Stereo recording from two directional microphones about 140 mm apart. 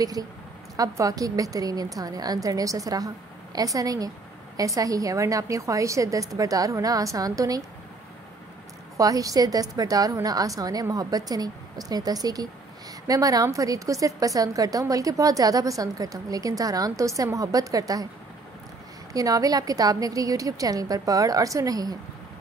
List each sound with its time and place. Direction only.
0.0 s a woman's voice: 25° right (ahead or behind)
8.9 s a woman's voice: 25° right (ahead or behind)
19.1 s a woman's voice: 25° right (ahead or behind)